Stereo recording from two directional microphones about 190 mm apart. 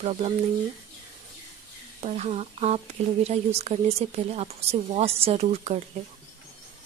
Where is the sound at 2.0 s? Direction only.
35° right (ahead or behind).